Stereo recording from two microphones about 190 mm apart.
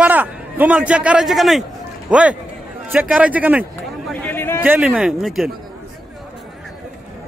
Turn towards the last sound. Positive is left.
turn(degrees=0)  # may be behind; listen again after turning